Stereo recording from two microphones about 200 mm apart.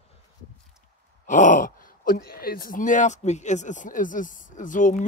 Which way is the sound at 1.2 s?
40° left (ahead or behind).